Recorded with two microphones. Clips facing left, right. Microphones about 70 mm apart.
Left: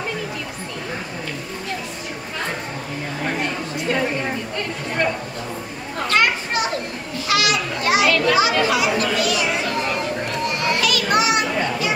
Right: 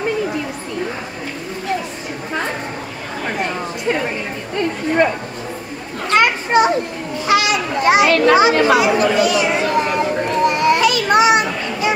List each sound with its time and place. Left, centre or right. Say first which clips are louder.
6.0 s children playing: right 4 dB; right